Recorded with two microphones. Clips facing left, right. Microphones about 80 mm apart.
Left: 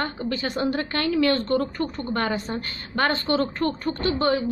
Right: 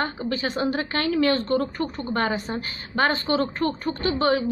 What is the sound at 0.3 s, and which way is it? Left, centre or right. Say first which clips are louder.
A woman's voice: left 1 dB; right.